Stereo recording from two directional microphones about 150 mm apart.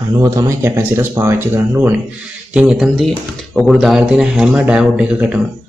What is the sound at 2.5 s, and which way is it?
Speech, 5° right (ahead or behind).